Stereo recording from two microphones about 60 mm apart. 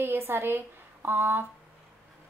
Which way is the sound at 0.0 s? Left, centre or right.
Right.